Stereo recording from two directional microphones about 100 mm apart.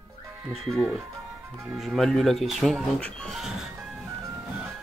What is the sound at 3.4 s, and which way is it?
Speech, 5° right (ahead or behind).